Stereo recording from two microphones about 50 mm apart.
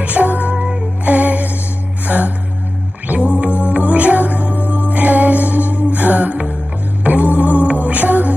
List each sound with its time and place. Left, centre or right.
0.0 s music: right